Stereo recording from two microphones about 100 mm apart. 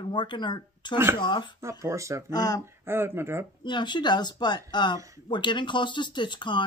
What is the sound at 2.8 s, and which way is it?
Speech, 25° right (ahead or behind).